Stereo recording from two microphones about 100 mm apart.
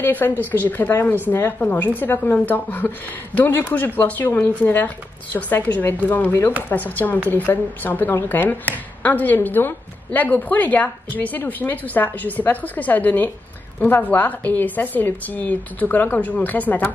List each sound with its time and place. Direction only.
0.0 s a woman's voice: 20° left (ahead or behind)